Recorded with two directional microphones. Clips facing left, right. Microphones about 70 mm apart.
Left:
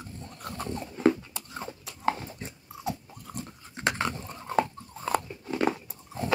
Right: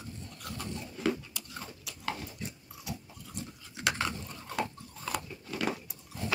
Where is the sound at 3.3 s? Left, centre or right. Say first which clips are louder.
Left 3 dB; left.